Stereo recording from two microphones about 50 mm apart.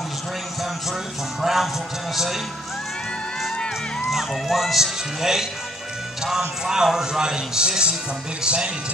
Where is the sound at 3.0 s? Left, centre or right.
Centre.